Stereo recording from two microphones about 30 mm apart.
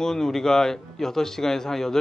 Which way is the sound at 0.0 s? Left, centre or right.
Centre.